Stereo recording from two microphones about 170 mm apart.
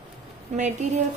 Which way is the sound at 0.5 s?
45° right (ahead or behind).